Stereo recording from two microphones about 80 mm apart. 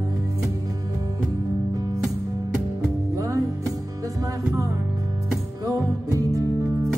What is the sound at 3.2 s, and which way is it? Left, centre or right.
Music, right.